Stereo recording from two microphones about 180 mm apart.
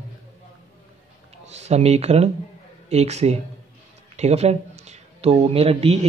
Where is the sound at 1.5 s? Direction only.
35° right (ahead or behind).